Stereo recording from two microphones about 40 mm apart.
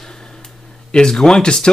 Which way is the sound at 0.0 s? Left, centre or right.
Centre.